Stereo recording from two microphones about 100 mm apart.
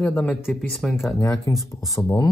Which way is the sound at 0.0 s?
10° left (ahead or behind).